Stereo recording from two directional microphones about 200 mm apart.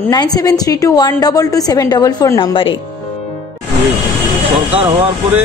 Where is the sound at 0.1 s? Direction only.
20° left (ahead or behind).